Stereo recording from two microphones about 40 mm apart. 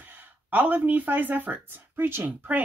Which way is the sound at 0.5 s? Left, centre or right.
Right.